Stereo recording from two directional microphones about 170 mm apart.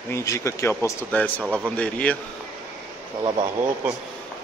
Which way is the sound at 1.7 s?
10° left (ahead or behind).